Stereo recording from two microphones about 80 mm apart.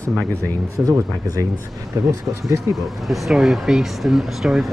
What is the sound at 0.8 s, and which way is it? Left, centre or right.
Speech, right.